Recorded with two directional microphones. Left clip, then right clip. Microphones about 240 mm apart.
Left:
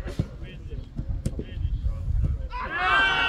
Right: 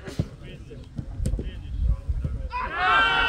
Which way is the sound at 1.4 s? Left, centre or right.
Right.